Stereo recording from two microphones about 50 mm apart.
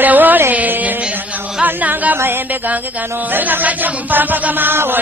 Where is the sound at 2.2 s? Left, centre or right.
Right.